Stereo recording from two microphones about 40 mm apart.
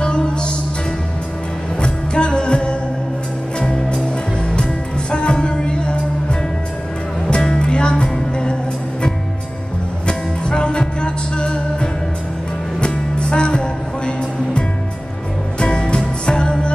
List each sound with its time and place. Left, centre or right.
0.0 s music: left
1.8 s music: left
7.2 s music: left
10.0 s music: left
15.6 s music: left